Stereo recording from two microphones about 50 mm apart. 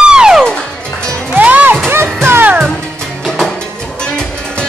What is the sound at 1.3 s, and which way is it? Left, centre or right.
Music, right.